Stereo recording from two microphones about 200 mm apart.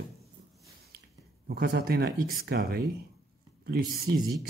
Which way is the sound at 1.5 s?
55° right (ahead or behind).